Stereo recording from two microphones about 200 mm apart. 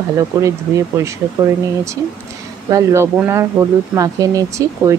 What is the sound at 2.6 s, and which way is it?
Speech, 15° right (ahead or behind).